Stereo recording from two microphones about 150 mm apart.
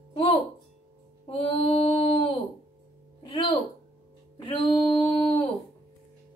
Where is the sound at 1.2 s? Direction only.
35° left (ahead or behind).